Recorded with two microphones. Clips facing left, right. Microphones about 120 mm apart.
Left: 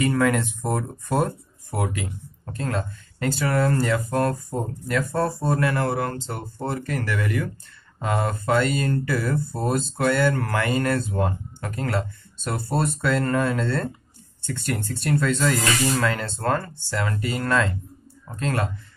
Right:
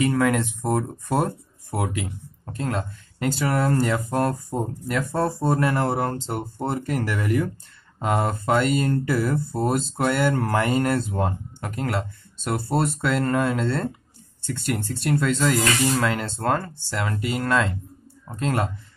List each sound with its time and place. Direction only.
0.0 s speech: 10° right (ahead or behind)